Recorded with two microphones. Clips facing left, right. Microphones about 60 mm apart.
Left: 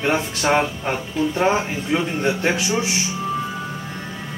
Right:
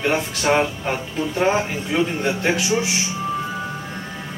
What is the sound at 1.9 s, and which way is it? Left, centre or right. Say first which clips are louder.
Speech: even; centre.